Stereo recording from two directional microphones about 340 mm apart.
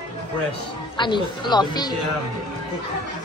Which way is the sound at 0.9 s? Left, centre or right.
Centre.